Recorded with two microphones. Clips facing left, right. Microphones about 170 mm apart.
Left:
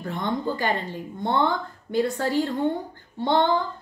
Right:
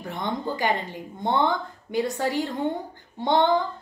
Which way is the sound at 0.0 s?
15° right (ahead or behind).